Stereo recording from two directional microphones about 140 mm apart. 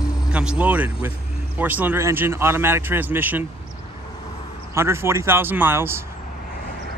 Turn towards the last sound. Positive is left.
turn(degrees=-15)  # may be behind; listen again after turning